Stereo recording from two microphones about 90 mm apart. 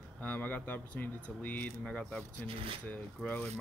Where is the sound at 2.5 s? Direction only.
90° right.